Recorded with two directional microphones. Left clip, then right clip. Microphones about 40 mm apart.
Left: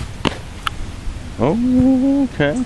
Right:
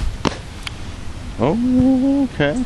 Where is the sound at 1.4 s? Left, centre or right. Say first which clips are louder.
Left 1 dB; left.